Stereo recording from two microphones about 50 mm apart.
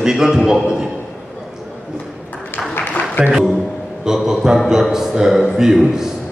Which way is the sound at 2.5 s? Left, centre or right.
Left.